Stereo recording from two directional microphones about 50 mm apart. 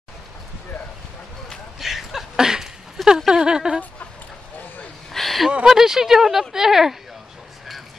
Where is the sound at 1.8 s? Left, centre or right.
Centre.